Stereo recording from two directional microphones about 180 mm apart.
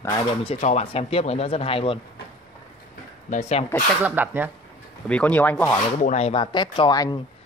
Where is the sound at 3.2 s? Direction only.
40° left (ahead or behind).